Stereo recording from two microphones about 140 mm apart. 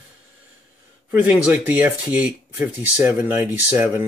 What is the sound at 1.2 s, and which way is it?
Speech, 10° right (ahead or behind).